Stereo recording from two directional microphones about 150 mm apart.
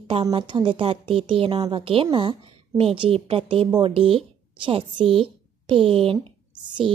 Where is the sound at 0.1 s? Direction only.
35° right (ahead or behind).